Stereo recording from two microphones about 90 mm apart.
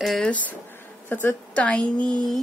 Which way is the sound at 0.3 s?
15° left (ahead or behind).